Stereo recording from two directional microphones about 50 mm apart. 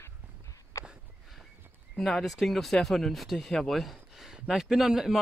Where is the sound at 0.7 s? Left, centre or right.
Left.